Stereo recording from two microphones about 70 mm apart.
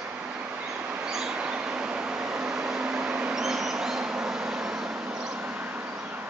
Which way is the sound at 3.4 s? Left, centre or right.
Centre.